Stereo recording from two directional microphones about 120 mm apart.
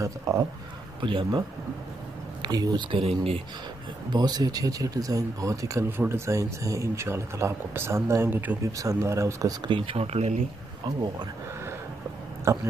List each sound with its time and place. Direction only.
0.0 s speech: 25° right (ahead or behind)
1.0 s speech: 45° right (ahead or behind)
2.4 s speech: 35° right (ahead or behind)
3.0 s speech: 55° right (ahead or behind)
4.1 s speech: 35° right (ahead or behind); by 8.5 s 15° right (ahead or behind)
8.7 s speech: 25° right (ahead or behind)
9.7 s speech: 50° right (ahead or behind); by 10.4 s 65° right (ahead or behind)
12.5 s speech: 25° right (ahead or behind)